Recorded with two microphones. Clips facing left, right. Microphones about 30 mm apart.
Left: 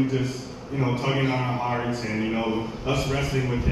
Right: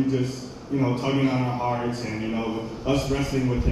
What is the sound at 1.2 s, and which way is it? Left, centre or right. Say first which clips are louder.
Mantra: right 1 dB; left.